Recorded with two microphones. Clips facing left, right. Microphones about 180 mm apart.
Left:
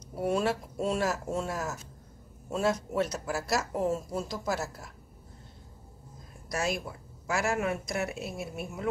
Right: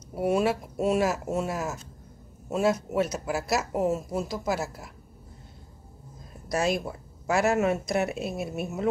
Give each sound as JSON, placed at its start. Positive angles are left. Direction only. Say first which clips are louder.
{"t": 0.1, "sound": "speech", "louder": "right 4 dB", "side_deg": -10}
{"t": 6.5, "sound": "speech", "louder": "right 5 dB", "side_deg": -20}